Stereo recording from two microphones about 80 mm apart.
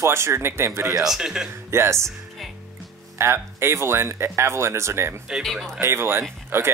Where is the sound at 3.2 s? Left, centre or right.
Right.